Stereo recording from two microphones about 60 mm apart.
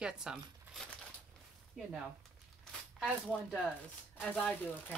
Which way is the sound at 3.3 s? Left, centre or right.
Centre.